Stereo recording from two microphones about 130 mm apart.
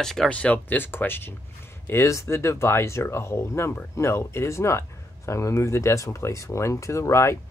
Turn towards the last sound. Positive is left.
turn(degrees=20)  # may be behind; listen again after turning